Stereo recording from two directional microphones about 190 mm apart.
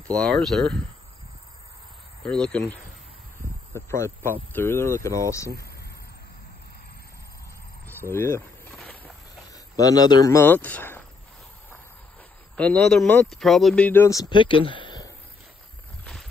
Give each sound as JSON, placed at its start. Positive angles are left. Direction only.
{"t": 0.1, "sound": "speech", "side_deg": 5}
{"t": 2.2, "sound": "speech", "side_deg": 5}
{"t": 7.8, "sound": "speech", "side_deg": 10}
{"t": 9.5, "sound": "speech", "side_deg": 20}
{"t": 12.5, "sound": "speech", "side_deg": 5}
{"t": 14.3, "sound": "speech", "side_deg": 25}
{"t": 16.0, "sound": "a sound", "side_deg": 0}